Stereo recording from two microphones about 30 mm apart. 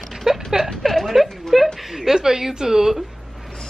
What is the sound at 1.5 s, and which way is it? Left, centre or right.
A woman's voice, centre.